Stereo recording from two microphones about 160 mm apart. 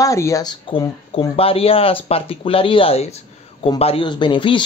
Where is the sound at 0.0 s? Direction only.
20° left (ahead or behind).